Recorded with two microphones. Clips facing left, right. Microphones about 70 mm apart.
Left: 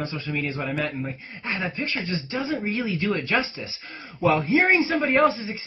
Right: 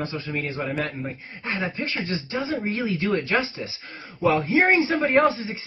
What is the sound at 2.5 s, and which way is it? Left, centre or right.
Speech, right.